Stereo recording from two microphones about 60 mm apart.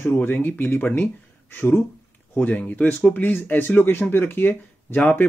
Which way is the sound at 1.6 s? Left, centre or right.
Left.